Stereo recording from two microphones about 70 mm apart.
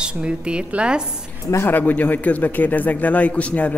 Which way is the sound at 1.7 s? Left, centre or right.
Left.